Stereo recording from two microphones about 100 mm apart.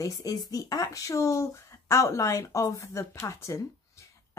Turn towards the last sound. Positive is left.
turn(degrees=30)  # may be behind; listen again after turning